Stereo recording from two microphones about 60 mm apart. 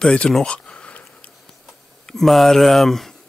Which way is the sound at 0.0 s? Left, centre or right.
Centre.